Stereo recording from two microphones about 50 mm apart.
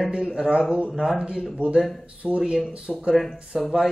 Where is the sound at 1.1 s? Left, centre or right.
Centre.